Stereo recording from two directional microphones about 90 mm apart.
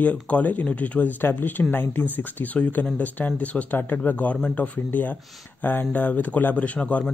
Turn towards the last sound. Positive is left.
turn(degrees=15)  # may be behind; listen again after turning